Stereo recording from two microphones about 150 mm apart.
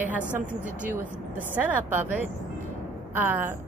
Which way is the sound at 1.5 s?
10° right (ahead or behind).